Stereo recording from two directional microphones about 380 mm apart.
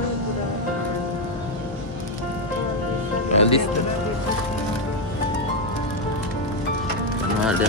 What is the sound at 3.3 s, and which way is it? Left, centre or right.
Music, centre.